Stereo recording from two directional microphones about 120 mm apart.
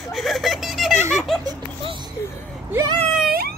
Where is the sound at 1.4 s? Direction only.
35° right (ahead or behind).